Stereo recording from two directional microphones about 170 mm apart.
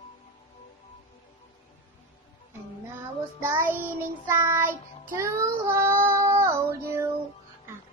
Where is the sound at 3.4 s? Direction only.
10° right (ahead or behind).